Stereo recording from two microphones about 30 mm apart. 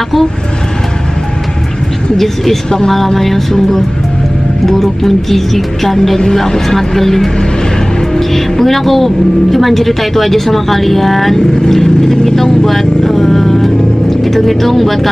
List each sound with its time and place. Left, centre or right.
2.1 s speech: centre
11.3 s speech: left; by 15.0 s centre